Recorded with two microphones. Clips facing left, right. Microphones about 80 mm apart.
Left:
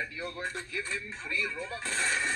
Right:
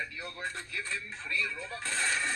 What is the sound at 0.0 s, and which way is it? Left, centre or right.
Speech, centre.